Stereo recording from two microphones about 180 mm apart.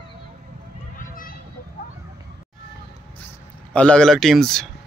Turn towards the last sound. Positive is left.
turn(degrees=0)  # may be behind; listen again after turning